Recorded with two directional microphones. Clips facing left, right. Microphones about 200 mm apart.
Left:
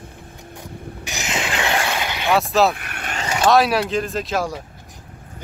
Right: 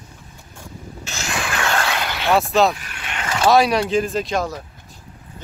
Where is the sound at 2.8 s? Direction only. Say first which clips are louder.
Left 3 dB; 60° left (ahead or behind).